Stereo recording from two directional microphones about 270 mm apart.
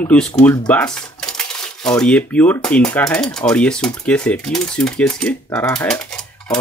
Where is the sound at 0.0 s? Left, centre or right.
Centre.